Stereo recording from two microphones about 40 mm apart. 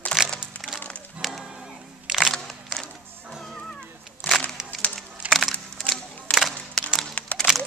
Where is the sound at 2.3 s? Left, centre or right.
Centre.